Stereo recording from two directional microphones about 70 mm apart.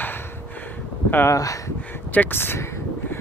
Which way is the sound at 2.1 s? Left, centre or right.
Left.